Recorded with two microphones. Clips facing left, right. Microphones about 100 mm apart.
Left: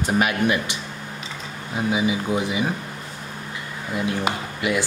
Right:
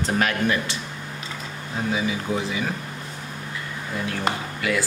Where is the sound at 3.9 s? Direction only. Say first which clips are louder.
Left 2 dB; 20° left (ahead or behind).